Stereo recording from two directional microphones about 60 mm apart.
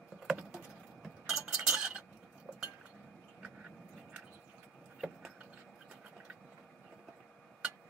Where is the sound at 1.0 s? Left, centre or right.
Centre.